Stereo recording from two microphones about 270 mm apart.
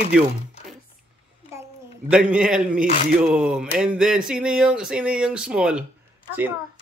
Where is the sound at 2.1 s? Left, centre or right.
Centre.